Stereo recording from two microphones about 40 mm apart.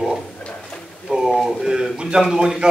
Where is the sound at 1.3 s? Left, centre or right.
Centre.